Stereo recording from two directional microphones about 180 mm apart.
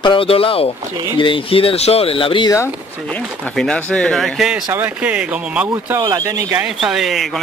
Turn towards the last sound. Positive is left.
turn(degrees=0)  # may be behind; listen again after turning